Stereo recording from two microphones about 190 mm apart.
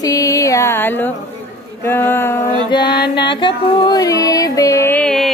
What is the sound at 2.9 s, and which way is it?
Music, 60° left (ahead or behind).